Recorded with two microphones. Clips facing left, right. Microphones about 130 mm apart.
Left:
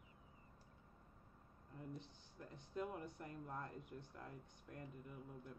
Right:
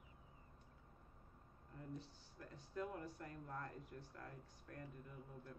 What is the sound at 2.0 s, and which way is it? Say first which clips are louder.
Speech: even; 20° left (ahead or behind).